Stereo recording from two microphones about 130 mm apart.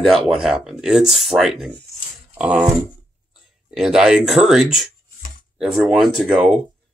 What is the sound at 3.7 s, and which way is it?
Speech, 5° right (ahead or behind).